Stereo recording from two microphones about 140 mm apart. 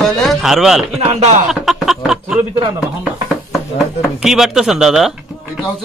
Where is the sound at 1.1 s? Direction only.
50° right (ahead or behind).